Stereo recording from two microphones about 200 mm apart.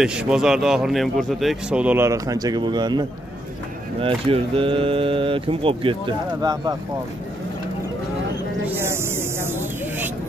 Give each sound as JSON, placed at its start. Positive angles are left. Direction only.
{"t": 0.0, "sound": "speech", "side_deg": -5}
{"t": 8.6, "sound": "snake", "side_deg": -10}